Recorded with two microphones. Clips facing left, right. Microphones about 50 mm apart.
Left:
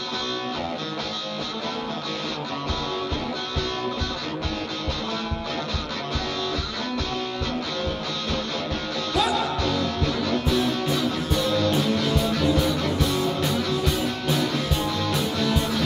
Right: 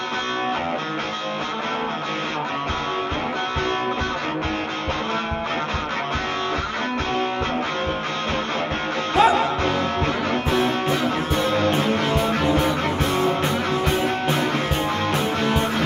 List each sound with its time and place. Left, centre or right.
9.1 s music: right
11.5 s music: right